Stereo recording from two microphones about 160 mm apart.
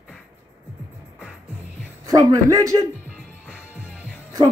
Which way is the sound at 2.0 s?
20° right (ahead or behind).